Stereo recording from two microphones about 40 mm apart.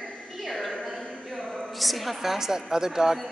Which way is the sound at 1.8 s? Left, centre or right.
Centre.